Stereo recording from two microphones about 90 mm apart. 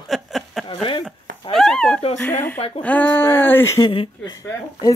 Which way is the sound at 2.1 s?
20° left (ahead or behind).